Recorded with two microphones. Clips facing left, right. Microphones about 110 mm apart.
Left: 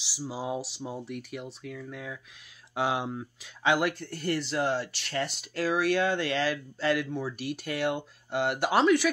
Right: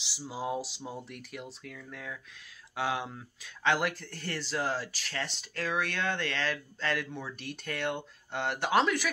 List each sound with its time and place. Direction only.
0.0 s speech: centre (ahead or behind)
3.7 s speech: 5° left (ahead or behind)